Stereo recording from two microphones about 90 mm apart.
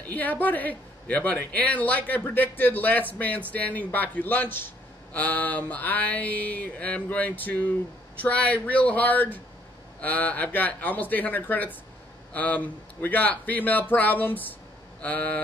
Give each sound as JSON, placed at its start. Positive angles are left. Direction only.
{"t": 0.1, "sound": "speech", "side_deg": 20}